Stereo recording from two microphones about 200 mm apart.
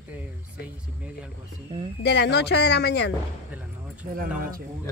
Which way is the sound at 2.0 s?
55° left (ahead or behind).